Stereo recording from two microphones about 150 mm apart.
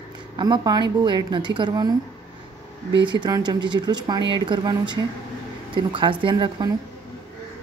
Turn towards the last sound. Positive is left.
turn(degrees=-30)  # may be behind; listen again after turning